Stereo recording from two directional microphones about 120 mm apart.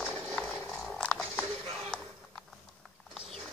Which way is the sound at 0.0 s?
10° left (ahead or behind).